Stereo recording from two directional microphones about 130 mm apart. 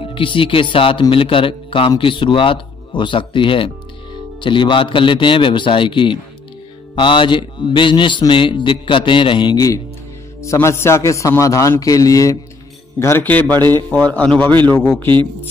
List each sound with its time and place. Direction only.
0.0 s a man's voice: 40° left (ahead or behind)
13.0 s a man's voice: 15° left (ahead or behind)